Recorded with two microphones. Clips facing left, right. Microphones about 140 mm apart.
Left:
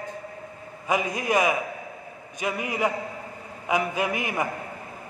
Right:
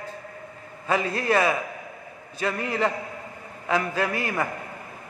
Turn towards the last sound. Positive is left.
turn(degrees=15)  # may be behind; listen again after turning